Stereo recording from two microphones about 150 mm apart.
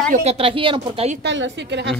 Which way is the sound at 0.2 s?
40° right (ahead or behind).